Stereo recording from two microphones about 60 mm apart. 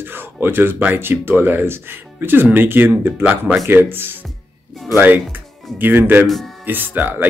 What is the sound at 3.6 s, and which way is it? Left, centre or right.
A man's voice, right.